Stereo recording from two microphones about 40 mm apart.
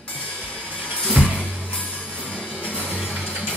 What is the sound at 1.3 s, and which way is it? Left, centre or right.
Music, right.